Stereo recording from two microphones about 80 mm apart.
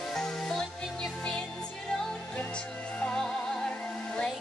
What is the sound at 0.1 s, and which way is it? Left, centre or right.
Music, centre.